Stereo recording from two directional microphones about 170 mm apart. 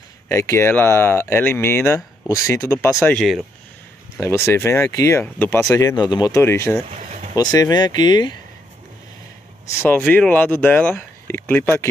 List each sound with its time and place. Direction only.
0.3 s speech: 15° left (ahead or behind)
3.2 s speech: centre (ahead or behind)
4.2 s speech: 15° left (ahead or behind)
9.8 s speech: 10° left (ahead or behind)